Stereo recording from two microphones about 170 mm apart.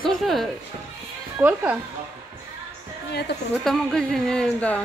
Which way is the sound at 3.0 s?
75° left (ahead or behind).